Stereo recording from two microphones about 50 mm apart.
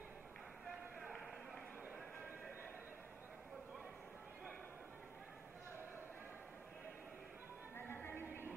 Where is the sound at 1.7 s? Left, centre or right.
Right.